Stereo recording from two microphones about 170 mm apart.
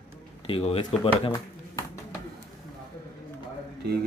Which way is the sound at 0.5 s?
35° left (ahead or behind).